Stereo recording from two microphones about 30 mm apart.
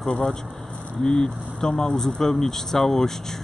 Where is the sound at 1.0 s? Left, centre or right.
Left.